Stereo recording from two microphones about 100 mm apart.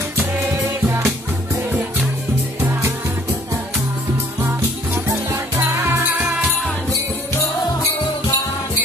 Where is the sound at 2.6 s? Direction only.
30° right (ahead or behind).